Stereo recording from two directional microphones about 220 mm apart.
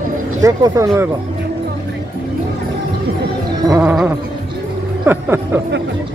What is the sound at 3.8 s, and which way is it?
Speech, 5° right (ahead or behind).